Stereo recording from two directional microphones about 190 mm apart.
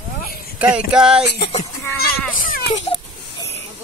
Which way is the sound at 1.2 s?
60° left (ahead or behind).